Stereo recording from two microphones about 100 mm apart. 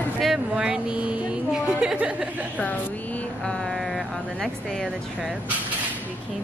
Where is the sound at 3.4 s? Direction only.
Centre (ahead or behind).